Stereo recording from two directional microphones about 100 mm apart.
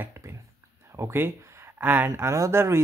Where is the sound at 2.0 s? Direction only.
30° right (ahead or behind).